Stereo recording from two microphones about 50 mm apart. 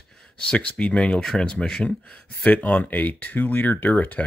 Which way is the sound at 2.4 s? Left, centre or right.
Left.